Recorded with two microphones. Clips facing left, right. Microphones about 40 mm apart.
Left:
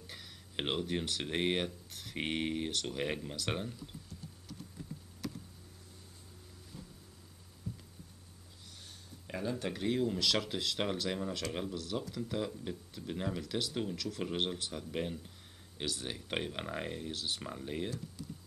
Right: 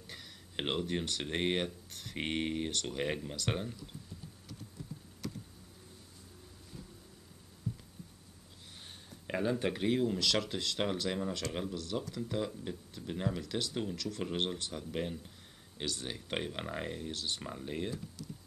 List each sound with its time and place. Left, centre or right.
0.0 s speech: centre
5.2 s computer keyboard: centre
9.3 s speech: right
9.9 s speech: centre